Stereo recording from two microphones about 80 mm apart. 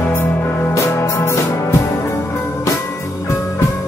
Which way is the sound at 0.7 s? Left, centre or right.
Left.